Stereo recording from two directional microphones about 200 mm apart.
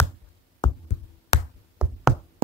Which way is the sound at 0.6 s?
20° left (ahead or behind).